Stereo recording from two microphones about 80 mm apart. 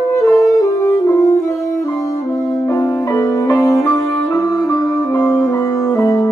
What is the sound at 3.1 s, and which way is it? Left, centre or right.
Music, left.